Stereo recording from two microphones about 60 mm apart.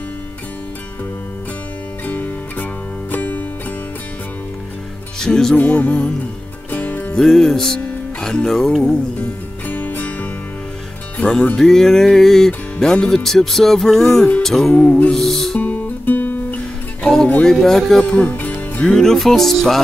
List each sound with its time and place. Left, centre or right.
2.0 s music: left
5.2 s music: centre
6.7 s music: left
7.1 s music: centre
9.7 s music: left
11.2 s music: left
11.5 s music: centre
14.7 s music: centre
15.1 s music: centre
15.6 s music: left
17.0 s music: centre
18.1 s music: left
18.9 s music: centre